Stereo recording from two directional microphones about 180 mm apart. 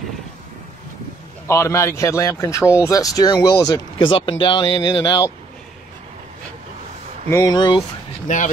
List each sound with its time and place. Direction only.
1.5 s a man's voice: 15° left (ahead or behind)
7.2 s speech: 15° left (ahead or behind)
8.3 s speech: 45° left (ahead or behind)